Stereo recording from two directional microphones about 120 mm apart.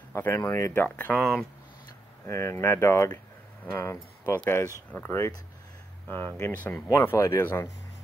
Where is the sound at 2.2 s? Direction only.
20° left (ahead or behind).